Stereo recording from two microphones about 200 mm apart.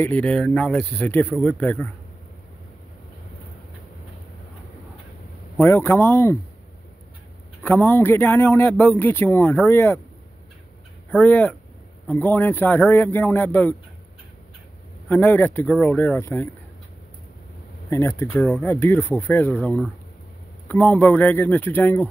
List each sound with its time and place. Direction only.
0.0 s a man's voice: 5° left (ahead or behind)
5.6 s a man's voice: 10° left (ahead or behind)
7.6 s a man's voice: 10° left (ahead or behind)
11.1 s a man's voice: 10° left (ahead or behind)
15.0 s a man's voice: 10° left (ahead or behind)
17.8 s a man's voice: 15° left (ahead or behind)